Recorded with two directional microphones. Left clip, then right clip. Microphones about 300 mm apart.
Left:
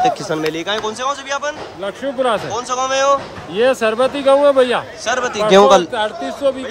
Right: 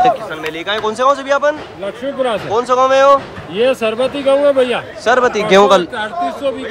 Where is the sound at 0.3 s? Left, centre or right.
Centre.